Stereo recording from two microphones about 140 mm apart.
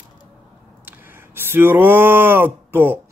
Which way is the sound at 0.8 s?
15° right (ahead or behind).